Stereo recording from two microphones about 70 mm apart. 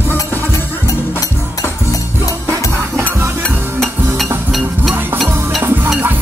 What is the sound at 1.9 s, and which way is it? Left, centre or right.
Music, left.